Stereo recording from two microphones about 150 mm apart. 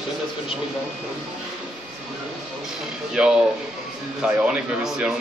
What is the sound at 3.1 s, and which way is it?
Speech, 5° right (ahead or behind).